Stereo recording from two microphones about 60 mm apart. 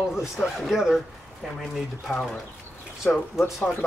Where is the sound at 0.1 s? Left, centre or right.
Centre.